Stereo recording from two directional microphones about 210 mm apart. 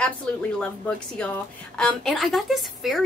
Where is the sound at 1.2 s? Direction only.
5° left (ahead or behind).